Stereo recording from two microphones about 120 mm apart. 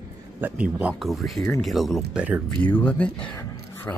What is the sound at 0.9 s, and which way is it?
Speech, centre (ahead or behind).